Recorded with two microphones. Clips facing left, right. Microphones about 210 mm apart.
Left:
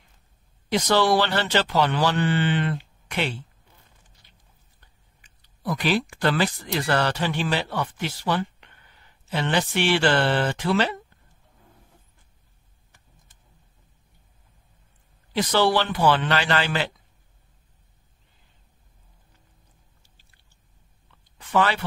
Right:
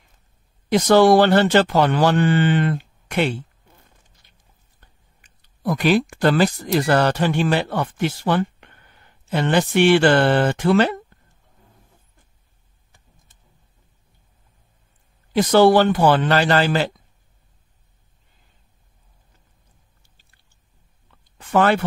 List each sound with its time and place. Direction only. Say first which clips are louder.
0.7 s speech: right 7 dB; 50° right (ahead or behind)
4.2 s a sound: left 1 dB; 50° right (ahead or behind)
4.7 s speech: right 3 dB; 50° right (ahead or behind)
15.3 s speech: right 8 dB; 50° right (ahead or behind)
21.4 s speech: right 5 dB; 50° right (ahead or behind)